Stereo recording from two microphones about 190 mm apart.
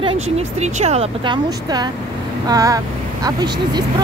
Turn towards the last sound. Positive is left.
turn(degrees=-20)  # may be behind; listen again after turning